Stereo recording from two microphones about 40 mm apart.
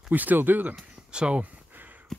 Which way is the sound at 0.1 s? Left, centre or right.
Right.